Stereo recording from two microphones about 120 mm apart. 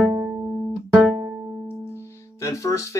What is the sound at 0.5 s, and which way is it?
Music, 10° right (ahead or behind).